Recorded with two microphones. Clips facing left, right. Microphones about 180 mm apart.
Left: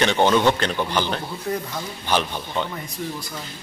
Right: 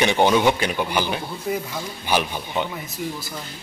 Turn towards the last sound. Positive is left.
turn(degrees=-5)  # may be behind; listen again after turning